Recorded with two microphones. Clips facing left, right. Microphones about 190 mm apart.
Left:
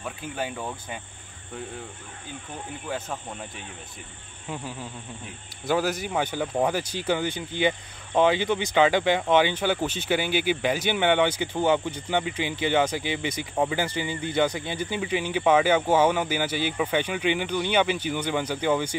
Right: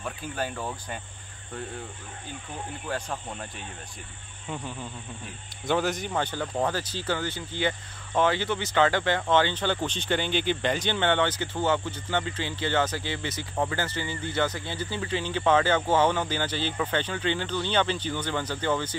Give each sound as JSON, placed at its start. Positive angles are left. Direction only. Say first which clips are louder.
{"t": 0.0, "sound": "cricket", "louder": "even", "side_deg": 5}
{"t": 3.1, "sound": "cricket", "louder": "even", "side_deg": 5}
{"t": 4.5, "sound": "speech", "louder": "left 1 dB", "side_deg": 5}